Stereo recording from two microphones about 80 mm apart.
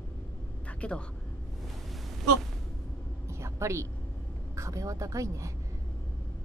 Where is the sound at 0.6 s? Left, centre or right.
Centre.